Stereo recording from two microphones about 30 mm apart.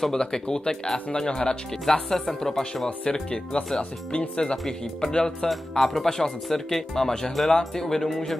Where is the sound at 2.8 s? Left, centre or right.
Left.